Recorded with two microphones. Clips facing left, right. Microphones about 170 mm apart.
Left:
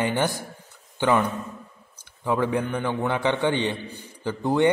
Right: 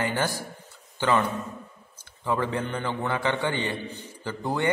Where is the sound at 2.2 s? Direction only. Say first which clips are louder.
Left 3 dB; 15° left (ahead or behind).